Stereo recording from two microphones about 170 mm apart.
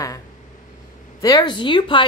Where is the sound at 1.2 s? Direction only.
25° left (ahead or behind).